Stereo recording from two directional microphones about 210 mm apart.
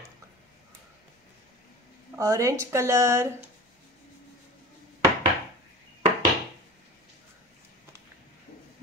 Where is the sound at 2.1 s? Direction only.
15° right (ahead or behind).